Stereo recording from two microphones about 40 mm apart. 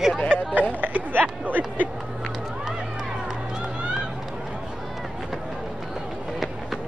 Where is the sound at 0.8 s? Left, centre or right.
Right.